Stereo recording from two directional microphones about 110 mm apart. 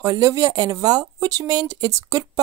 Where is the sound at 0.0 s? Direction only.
30° right (ahead or behind).